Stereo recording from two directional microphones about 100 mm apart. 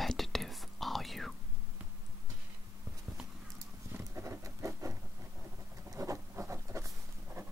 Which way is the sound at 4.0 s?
30° right (ahead or behind).